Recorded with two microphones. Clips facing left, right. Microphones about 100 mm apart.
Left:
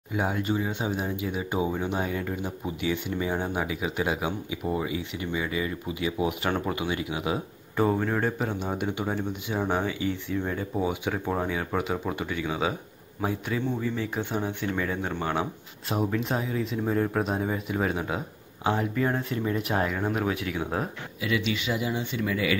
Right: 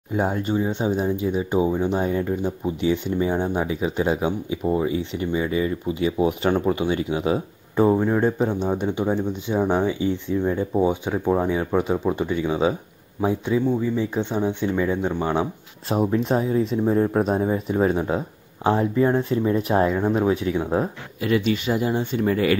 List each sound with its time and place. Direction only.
0.1 s speech: 35° right (ahead or behind); by 8.4 s 15° right (ahead or behind)
8.4 s speech: 30° right (ahead or behind)
8.8 s speech: 15° right (ahead or behind)
16.2 s speech: 35° right (ahead or behind)
21.2 s speech: 45° right (ahead or behind)